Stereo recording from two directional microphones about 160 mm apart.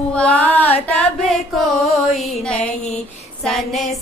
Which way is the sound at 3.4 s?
Centre (ahead or behind).